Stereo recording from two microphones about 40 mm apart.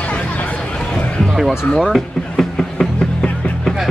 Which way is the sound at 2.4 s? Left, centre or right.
Centre.